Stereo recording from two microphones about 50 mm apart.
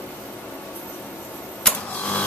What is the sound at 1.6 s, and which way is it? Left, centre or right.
Mechanisms, left.